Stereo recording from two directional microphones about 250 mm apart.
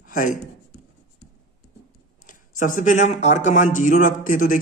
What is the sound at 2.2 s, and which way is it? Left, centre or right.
Speech, left.